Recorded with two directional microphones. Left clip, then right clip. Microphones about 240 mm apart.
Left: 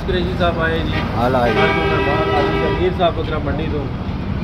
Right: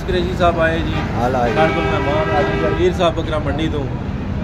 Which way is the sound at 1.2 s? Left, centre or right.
Centre.